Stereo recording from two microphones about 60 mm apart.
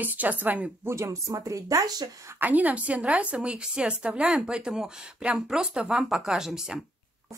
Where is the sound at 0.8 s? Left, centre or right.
Right.